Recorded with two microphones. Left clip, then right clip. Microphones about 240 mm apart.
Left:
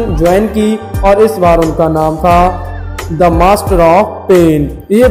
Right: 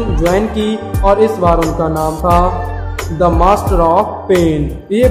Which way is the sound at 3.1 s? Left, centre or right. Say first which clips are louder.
Left 3 dB; centre.